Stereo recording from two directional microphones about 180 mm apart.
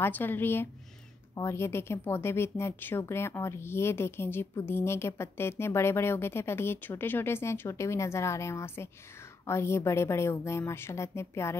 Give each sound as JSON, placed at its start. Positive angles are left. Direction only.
{"t": 0.0, "sound": "speech", "side_deg": 10}